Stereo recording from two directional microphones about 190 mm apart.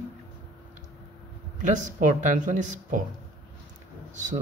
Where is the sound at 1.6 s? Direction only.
40° right (ahead or behind).